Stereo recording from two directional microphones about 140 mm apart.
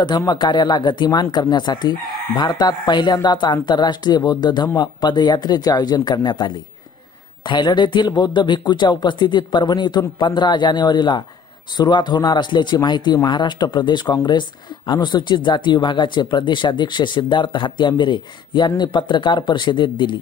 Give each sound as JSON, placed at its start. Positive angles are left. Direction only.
{"t": 0.2, "sound": "speech", "side_deg": 30}